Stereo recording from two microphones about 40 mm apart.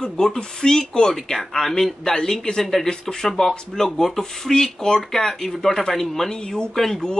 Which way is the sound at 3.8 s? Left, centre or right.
Centre.